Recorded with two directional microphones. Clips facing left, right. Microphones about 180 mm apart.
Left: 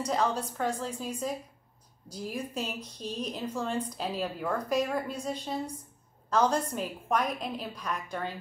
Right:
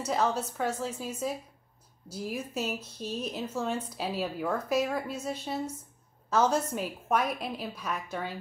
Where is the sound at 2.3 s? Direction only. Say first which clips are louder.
Right 1 dB; 5° right (ahead or behind).